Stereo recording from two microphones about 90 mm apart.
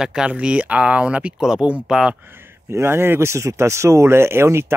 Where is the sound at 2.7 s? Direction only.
30° right (ahead or behind).